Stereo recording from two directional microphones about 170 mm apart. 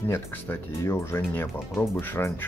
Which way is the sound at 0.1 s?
15° left (ahead or behind).